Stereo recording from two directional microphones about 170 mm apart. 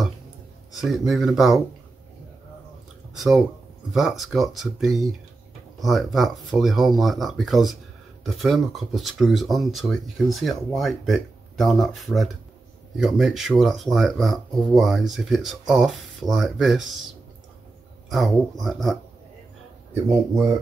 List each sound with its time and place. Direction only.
0.7 s speech: centre (ahead or behind)
3.2 s speech: centre (ahead or behind)
18.1 s speech: centre (ahead or behind)
19.9 s speech: 15° right (ahead or behind)